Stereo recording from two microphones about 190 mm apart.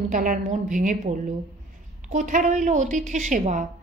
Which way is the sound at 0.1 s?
45° right (ahead or behind).